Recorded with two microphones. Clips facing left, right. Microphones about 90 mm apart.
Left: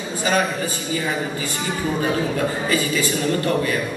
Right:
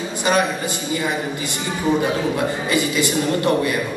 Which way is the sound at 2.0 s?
20° right (ahead or behind).